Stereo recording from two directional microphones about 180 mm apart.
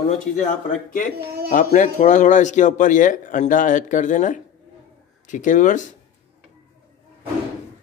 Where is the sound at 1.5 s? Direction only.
45° left (ahead or behind).